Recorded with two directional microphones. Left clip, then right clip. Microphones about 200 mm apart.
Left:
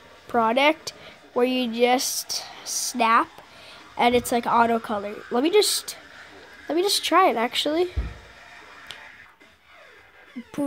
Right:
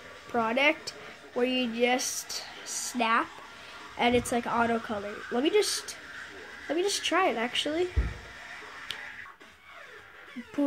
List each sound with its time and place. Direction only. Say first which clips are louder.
0.3 s speech: left 6 dB; 40° left (ahead or behind)